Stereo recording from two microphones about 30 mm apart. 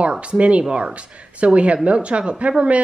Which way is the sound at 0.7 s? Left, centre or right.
Right.